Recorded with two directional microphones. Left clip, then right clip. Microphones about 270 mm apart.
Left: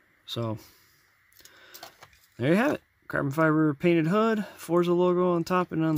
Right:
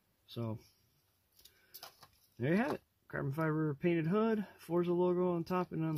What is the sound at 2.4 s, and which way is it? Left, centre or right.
Speech, left.